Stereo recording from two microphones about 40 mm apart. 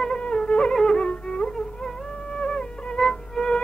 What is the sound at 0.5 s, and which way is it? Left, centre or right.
Music, left.